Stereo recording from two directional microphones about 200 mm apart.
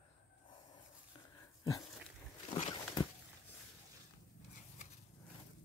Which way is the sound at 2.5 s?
20° left (ahead or behind).